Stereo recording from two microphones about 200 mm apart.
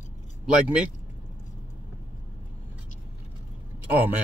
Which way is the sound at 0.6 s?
5° right (ahead or behind).